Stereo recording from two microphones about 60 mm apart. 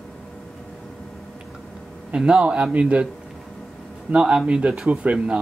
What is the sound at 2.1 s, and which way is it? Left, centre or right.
Speech, centre.